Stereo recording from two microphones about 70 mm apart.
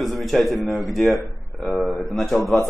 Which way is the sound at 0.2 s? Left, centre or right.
Centre.